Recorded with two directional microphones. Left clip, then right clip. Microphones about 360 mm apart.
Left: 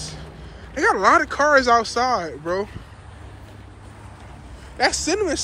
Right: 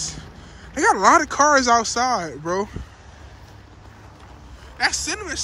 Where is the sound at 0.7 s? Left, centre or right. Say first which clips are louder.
Right 1 dB; centre.